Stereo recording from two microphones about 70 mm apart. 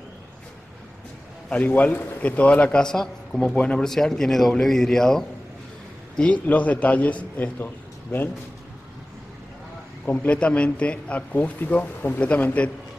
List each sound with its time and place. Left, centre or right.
1.5 s a man's voice: left
3.8 s speech: centre
6.1 s a man's voice: centre
10.0 s a man's voice: left